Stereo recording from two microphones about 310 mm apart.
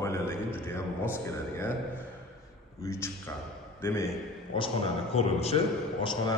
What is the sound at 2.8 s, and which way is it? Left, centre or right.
A man's voice, centre.